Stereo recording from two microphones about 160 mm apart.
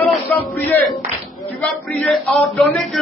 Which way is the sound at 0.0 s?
5° left (ahead or behind).